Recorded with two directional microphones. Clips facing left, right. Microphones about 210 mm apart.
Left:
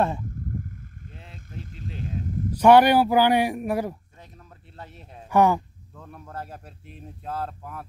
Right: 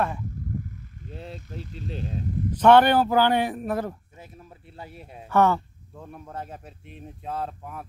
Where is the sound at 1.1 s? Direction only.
35° right (ahead or behind).